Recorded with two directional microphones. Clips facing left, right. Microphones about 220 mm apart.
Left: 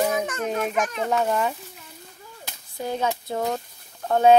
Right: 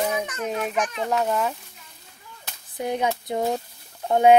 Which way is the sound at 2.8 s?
15° right (ahead or behind).